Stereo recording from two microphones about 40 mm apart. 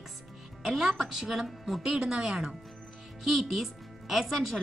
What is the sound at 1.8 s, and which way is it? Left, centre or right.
A woman's voice, centre.